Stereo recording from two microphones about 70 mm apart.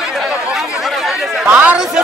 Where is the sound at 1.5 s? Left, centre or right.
Right.